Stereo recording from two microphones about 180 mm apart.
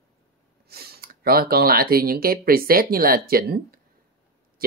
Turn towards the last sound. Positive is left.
turn(degrees=-55)  # may be behind; listen again after turning